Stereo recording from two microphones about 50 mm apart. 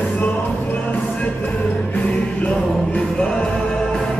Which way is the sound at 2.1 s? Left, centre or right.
Left.